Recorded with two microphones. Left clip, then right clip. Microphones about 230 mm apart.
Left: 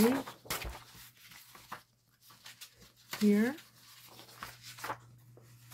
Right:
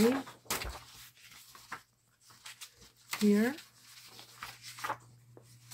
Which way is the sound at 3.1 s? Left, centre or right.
Centre.